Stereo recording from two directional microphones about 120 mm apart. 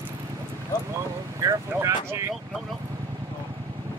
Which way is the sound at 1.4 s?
30° right (ahead or behind).